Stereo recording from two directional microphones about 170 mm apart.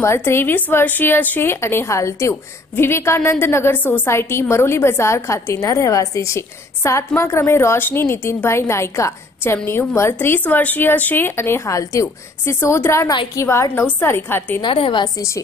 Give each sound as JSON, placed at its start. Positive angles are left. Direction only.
{"t": 0.0, "sound": "a woman's voice", "side_deg": 15}
{"t": 14.6, "sound": "a woman's voice", "side_deg": 30}